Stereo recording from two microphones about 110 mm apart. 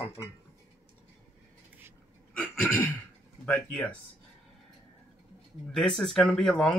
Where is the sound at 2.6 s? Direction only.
15° left (ahead or behind).